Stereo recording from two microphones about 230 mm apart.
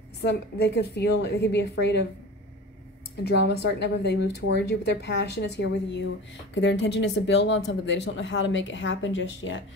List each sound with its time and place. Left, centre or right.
0.2 s speech: left
3.3 s speech: left